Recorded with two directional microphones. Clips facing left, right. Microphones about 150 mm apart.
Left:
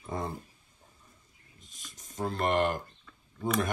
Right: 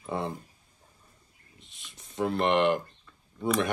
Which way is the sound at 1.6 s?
45° left (ahead or behind).